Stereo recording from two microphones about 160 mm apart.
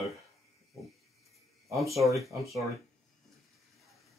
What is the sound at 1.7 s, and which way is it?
Speech, 20° right (ahead or behind).